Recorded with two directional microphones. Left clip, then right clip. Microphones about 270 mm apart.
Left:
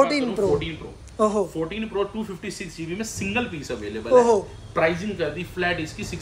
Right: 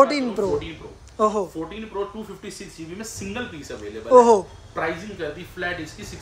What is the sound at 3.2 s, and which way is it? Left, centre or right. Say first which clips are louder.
Speech: left 5 dB; centre.